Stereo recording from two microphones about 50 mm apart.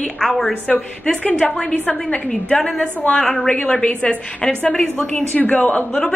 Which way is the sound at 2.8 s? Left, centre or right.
Left.